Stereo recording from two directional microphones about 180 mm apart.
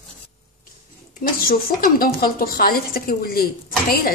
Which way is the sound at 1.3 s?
55° left (ahead or behind).